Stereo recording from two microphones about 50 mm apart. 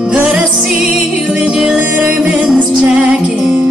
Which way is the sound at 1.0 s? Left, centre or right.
Right.